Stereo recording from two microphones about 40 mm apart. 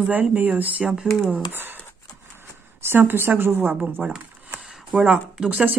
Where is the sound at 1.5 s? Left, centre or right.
Right.